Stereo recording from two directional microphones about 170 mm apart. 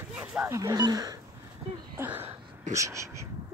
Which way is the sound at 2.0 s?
10° right (ahead or behind).